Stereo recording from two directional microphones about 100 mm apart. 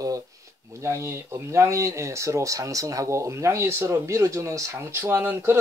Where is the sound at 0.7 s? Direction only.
30° right (ahead or behind).